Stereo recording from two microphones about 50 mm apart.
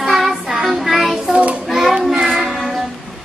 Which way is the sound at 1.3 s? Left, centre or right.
Right.